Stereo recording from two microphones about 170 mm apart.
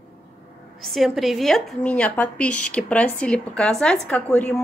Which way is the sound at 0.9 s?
Centre (ahead or behind).